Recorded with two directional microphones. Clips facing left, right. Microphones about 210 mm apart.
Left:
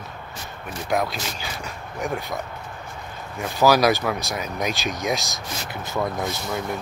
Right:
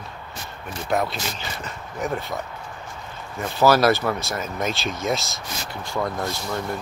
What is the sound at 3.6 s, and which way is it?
Speech, 15° left (ahead or behind).